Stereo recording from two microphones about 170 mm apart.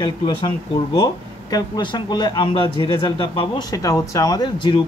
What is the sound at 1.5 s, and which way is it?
A man's voice, 25° left (ahead or behind).